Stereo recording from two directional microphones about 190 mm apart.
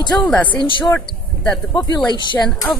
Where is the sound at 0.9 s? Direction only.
5° left (ahead or behind).